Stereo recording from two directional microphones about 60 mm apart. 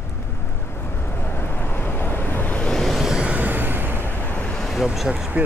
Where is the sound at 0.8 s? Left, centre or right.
Left.